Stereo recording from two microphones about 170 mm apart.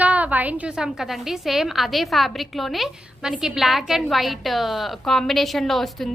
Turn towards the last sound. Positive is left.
turn(degrees=0)  # may be behind; listen again after turning